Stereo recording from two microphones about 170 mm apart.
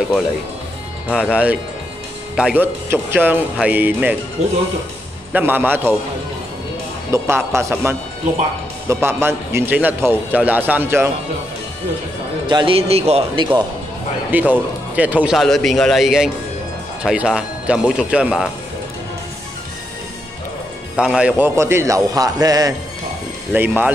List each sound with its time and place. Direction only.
1.1 s a man's voice: 5° right (ahead or behind)
5.3 s a man's voice: 10° right (ahead or behind)
7.1 s a man's voice: 15° right (ahead or behind)
12.4 s speech: 30° right (ahead or behind)
14.3 s a man's voice: 10° right (ahead or behind)
20.9 s a man's voice: 5° right (ahead or behind); by 22.8 s 20° right (ahead or behind)
23.5 s a man's voice: 10° right (ahead or behind)